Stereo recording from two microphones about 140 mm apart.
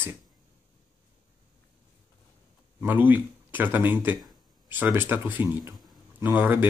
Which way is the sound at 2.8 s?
15° right (ahead or behind).